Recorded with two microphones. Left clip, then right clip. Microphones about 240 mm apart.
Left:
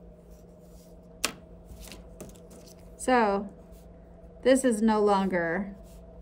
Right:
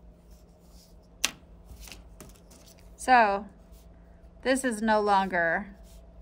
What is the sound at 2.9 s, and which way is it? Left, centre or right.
Speech, centre.